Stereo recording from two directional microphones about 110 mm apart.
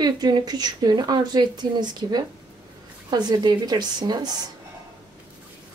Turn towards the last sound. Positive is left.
turn(degrees=-40)  # may be behind; listen again after turning